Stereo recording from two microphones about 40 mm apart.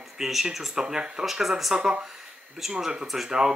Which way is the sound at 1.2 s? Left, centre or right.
Centre.